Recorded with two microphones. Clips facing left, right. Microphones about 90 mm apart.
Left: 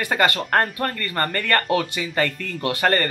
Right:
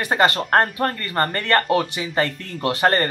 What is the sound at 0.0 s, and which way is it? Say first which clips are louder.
A man's voice: right 2 dB; 25° right (ahead or behind).